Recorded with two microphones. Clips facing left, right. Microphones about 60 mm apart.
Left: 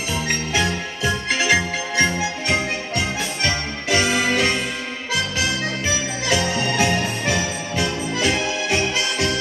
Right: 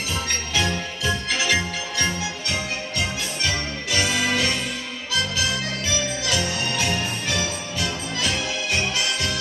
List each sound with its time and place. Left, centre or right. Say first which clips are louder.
1.0 s music: left 4 dB; left
3.9 s music: left 4 dB; left
6.2 s music: left 4 dB; left